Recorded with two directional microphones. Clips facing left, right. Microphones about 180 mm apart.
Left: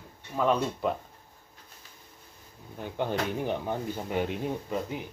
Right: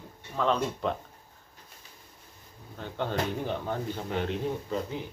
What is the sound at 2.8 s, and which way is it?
Speech, 15° left (ahead or behind).